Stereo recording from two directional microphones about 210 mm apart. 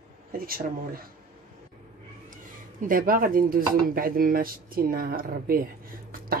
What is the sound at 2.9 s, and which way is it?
A woman's voice, 40° right (ahead or behind).